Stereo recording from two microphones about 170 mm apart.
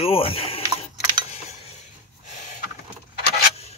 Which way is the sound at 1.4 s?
40° left (ahead or behind).